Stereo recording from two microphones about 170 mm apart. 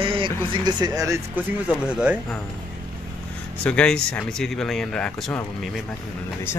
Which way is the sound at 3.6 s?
5° left (ahead or behind).